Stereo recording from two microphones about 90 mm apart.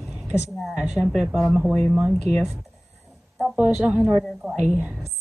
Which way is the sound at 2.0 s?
15° right (ahead or behind).